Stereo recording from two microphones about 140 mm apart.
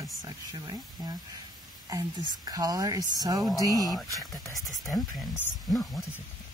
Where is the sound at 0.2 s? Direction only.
25° right (ahead or behind).